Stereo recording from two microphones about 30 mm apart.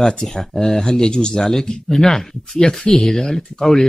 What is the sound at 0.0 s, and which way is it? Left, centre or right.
Speech, centre.